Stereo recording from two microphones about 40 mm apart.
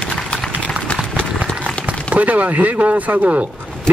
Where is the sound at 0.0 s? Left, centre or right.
Left.